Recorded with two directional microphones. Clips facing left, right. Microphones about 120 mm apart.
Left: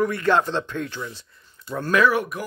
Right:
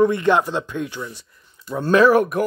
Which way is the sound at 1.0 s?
10° right (ahead or behind).